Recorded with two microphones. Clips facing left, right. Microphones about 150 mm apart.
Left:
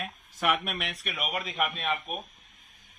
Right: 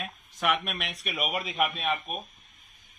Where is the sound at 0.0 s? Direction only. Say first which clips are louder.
Even; centre (ahead or behind).